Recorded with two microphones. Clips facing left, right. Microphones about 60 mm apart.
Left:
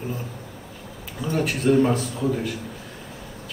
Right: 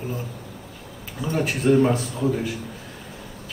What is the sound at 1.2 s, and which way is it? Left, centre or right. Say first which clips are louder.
A man's voice: even; centre.